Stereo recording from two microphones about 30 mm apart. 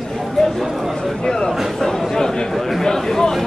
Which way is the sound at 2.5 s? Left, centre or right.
Centre.